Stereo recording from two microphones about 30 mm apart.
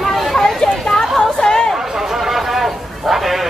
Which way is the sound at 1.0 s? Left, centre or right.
Centre.